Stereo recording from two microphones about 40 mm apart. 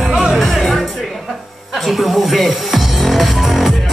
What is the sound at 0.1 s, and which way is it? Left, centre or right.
Music, right.